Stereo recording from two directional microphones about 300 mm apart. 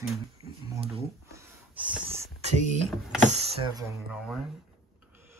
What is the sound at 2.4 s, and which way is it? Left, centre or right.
Speech, right.